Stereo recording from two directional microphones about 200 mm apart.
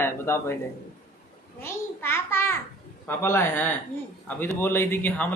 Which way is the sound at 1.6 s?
10° left (ahead or behind).